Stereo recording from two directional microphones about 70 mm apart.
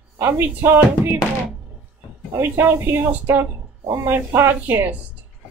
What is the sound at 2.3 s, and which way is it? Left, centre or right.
Speech, right.